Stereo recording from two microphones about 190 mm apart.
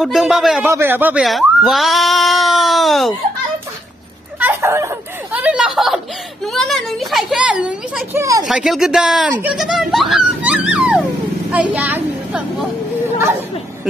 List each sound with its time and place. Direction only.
0.0 s speech: centre (ahead or behind)
0.7 s speech: 15° right (ahead or behind)
4.4 s speech: 10° right (ahead or behind)
8.5 s a woman's voice: centre (ahead or behind)